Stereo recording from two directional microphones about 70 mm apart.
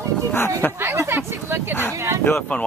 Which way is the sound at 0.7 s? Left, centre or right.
Right.